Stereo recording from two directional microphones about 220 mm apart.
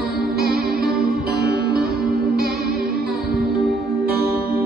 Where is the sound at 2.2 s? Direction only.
45° right (ahead or behind).